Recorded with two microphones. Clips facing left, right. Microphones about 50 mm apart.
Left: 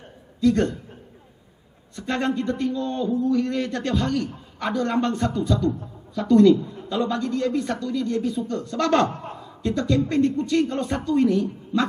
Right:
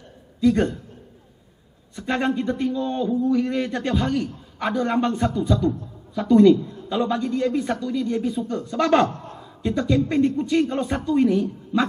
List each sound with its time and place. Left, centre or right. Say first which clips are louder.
0.4 s a man's voice: right 1 dB; centre
2.0 s a man's voice: right 1 dB; centre